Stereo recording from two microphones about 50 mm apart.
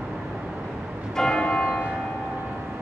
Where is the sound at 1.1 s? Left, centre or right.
Centre.